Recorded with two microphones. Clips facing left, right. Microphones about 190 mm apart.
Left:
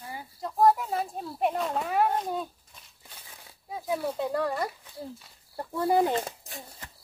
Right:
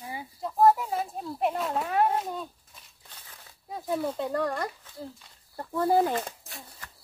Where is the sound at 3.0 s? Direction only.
10° left (ahead or behind).